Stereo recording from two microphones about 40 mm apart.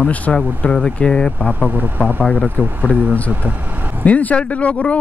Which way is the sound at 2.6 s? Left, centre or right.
Right.